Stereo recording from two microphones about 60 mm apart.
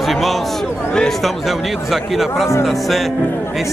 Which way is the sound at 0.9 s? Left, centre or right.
Centre.